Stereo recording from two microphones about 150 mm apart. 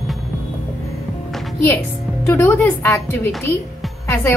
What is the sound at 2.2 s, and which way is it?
Speech, 15° left (ahead or behind).